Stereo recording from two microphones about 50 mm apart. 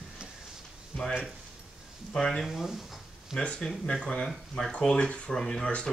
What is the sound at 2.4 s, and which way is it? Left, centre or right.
Speech, centre.